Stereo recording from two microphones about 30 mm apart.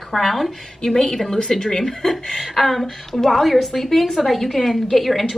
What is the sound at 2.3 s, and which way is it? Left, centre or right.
A woman's voice, centre.